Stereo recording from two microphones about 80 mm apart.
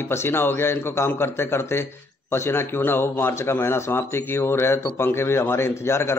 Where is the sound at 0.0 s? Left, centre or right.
Left.